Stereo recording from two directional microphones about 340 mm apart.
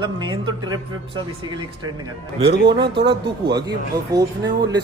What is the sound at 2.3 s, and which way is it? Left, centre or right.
A man's voice, centre.